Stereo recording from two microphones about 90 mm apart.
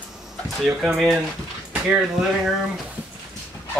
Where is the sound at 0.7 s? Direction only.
Centre (ahead or behind).